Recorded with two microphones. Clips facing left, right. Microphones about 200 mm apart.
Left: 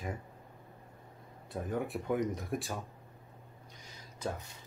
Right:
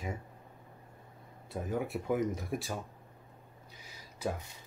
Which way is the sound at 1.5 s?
Centre (ahead or behind).